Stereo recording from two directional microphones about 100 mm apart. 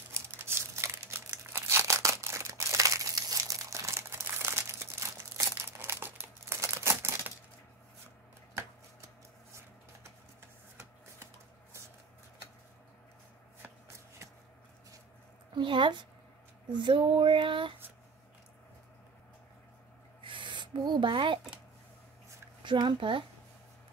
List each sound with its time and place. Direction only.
0.4 s crumpling: 25° right (ahead or behind)
15.5 s a woman's voice: 55° right (ahead or behind)
20.2 s rub: 55° right (ahead or behind)
22.6 s speech: 55° right (ahead or behind)